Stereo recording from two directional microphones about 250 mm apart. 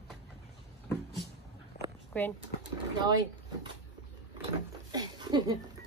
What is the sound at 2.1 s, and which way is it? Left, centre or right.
Speech, centre.